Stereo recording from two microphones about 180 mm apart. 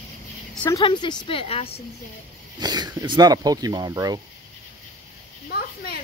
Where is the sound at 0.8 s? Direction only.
25° left (ahead or behind).